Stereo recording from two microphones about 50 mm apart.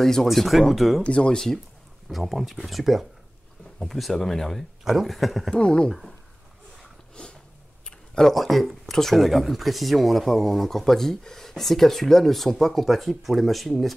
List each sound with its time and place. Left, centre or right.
0.0 s speech: centre
1.0 s speech: left
1.3 s speech: centre
5.5 s speech: centre
5.9 s speech: centre
7.2 s a sound: centre
8.8 s speech: centre